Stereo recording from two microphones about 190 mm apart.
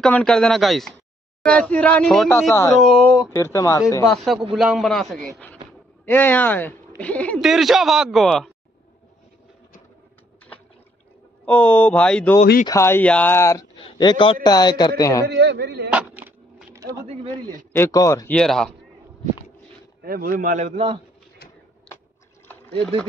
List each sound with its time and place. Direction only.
0.0 s speech: 5° left (ahead or behind)
2.8 s a sound: centre (ahead or behind)
3.3 s speech: 15° left (ahead or behind)
4.1 s speech: centre (ahead or behind)
6.0 s speech: 10° left (ahead or behind)
11.4 s a man's voice: 5° left (ahead or behind)
15.2 s a man's voice: 65° right (ahead or behind)
15.9 s a sound: 10° right (ahead or behind)
17.7 s speech: 15° left (ahead or behind)
18.4 s speech: 5° left (ahead or behind)
20.0 s a man's voice: 50° right (ahead or behind); by 21.0 s 30° right (ahead or behind)
21.9 s a sound: 5° left (ahead or behind)